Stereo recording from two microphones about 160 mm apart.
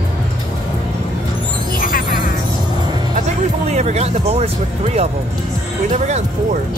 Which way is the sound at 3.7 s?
45° right (ahead or behind).